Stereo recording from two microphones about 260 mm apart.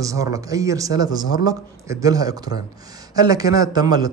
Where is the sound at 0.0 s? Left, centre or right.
Centre.